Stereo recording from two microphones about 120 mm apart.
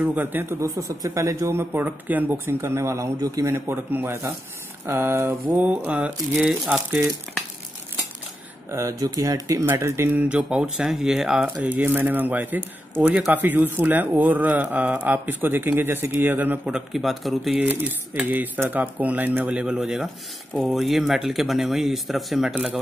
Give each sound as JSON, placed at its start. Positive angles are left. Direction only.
{"t": 0.0, "sound": "speech", "side_deg": -15}
{"t": 8.6, "sound": "speech", "side_deg": -25}
{"t": 11.4, "sound": "speech", "side_deg": -15}
{"t": 17.6, "sound": "speech", "side_deg": -15}